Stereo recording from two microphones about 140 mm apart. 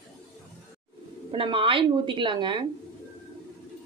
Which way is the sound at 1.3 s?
40° right (ahead or behind).